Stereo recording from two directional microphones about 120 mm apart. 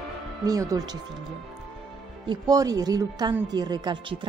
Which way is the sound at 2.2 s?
35° right (ahead or behind).